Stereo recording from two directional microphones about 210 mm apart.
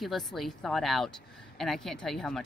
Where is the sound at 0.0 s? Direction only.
Centre (ahead or behind).